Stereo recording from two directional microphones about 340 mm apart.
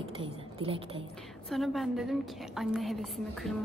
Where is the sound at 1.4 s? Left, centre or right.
Centre.